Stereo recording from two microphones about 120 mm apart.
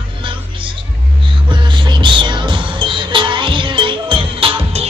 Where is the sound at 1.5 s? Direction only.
40° right (ahead or behind).